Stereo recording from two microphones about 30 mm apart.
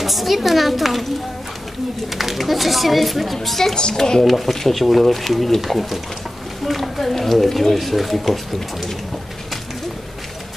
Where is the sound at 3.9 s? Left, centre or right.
Centre.